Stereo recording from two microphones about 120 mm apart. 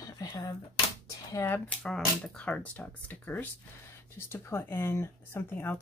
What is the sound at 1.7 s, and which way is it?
Speech, 5° left (ahead or behind).